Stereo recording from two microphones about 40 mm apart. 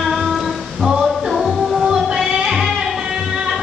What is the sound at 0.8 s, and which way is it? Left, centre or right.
Music, centre.